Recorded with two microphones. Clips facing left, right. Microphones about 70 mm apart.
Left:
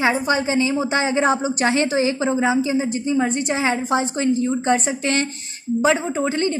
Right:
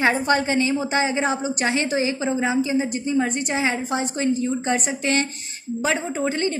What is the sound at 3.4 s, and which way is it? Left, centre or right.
A woman's voice, left.